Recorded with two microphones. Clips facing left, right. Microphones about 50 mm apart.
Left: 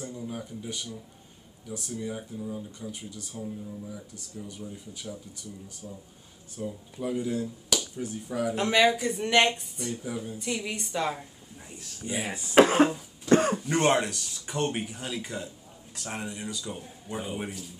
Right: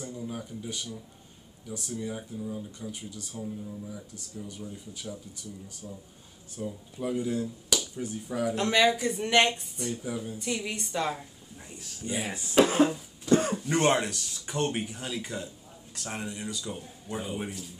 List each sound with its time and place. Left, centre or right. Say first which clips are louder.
0.0 s a sound: even; centre
1.7 s speech: even; centre
12.5 s speech: left 3 dB; left
13.7 s speech: right 2 dB; centre